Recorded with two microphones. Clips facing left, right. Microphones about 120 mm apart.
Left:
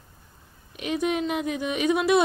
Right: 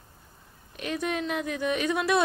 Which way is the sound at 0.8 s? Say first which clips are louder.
Left 4 dB; 15° left (ahead or behind).